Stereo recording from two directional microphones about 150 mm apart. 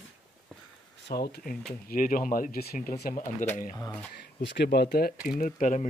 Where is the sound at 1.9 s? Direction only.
65° left (ahead or behind).